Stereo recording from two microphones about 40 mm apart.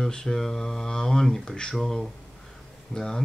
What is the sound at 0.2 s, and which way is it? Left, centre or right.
Speech, centre.